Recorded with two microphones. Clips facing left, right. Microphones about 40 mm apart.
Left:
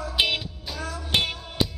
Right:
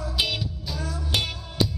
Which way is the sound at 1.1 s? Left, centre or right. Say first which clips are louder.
Left 4 dB; left.